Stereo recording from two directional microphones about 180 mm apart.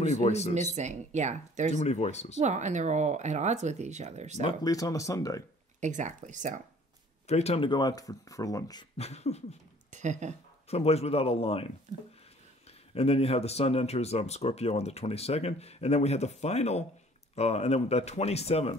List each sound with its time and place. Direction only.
0.1 s speech: 35° left (ahead or behind)
0.7 s speech: 40° right (ahead or behind)
1.7 s speech: 40° left (ahead or behind)
2.3 s speech: 40° right (ahead or behind)
4.5 s speech: 20° left (ahead or behind)
5.8 s speech: 45° right (ahead or behind)
7.2 s speech: 35° left (ahead or behind); by 8.8 s 20° left (ahead or behind)
8.9 s speech: 35° left (ahead or behind)
9.8 s speech: 40° right (ahead or behind)
10.7 s speech: 35° left (ahead or behind)
12.9 s speech: 35° left (ahead or behind)